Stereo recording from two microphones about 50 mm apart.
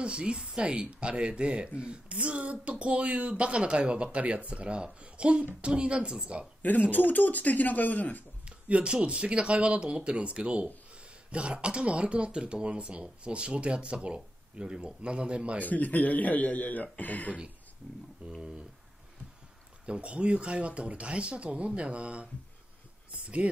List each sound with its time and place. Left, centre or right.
0.0 s speech: right
6.6 s a man's voice: left
8.5 s speech: right
15.6 s a man's voice: left
18.2 s speech: right
19.9 s speech: right